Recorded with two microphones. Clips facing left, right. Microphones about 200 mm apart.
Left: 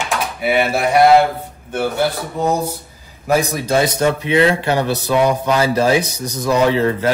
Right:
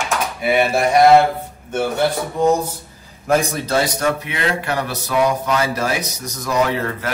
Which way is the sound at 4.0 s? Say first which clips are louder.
Left 6 dB; 25° left (ahead or behind).